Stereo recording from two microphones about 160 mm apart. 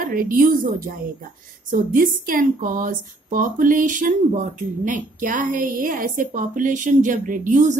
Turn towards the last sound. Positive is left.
turn(degrees=-50)  # may be behind; listen again after turning